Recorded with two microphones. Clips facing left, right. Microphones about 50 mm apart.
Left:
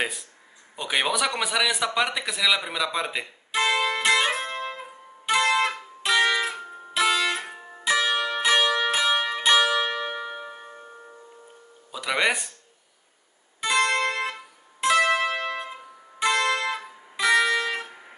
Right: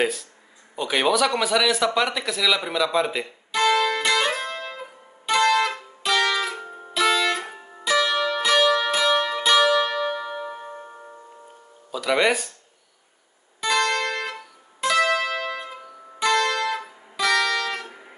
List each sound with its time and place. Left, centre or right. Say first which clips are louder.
0.0 s a man's voice: right 5 dB; centre
3.5 s music: right 3 dB; left
6.6 s music: right 2 dB; centre
7.0 s music: right 2 dB; centre
11.9 s speech: right 4 dB; centre
13.6 s music: even; left